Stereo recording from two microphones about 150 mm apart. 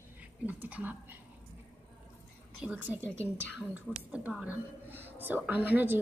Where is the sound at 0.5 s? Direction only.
10° right (ahead or behind).